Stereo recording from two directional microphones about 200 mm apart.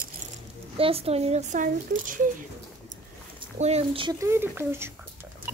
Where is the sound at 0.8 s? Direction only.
30° right (ahead or behind).